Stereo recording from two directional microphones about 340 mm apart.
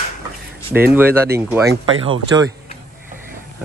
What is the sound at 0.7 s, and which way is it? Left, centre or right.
A man's voice, centre.